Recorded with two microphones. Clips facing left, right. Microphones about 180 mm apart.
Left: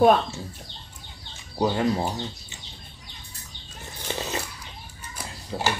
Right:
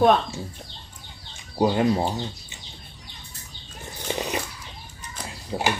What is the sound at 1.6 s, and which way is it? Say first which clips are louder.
Speech: right 3 dB; 20° right (ahead or behind).